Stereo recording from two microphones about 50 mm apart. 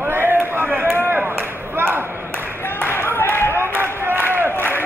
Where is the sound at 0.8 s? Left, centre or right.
Right.